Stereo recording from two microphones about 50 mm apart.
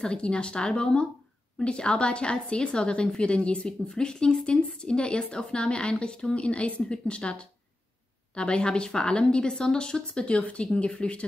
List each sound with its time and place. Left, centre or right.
0.0 s a woman's voice: centre